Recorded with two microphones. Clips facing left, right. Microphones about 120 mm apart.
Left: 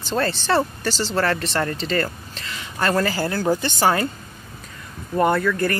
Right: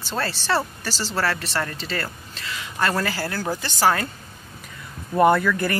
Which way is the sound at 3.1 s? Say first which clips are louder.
Left 6 dB; 15° left (ahead or behind).